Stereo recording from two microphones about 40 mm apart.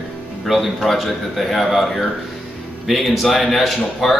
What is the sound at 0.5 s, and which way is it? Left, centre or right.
A man's voice, centre.